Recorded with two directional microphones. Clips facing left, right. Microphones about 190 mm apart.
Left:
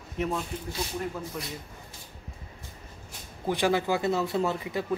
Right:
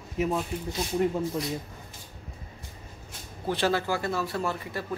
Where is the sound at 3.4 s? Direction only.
15° left (ahead or behind).